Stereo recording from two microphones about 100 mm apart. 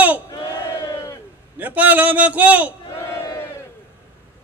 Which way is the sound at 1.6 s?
15° right (ahead or behind).